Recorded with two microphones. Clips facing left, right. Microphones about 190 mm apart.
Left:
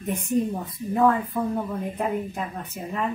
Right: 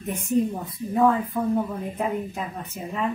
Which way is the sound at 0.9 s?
5° right (ahead or behind).